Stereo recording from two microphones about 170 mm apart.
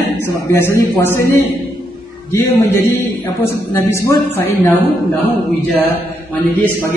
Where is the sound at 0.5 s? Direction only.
15° left (ahead or behind).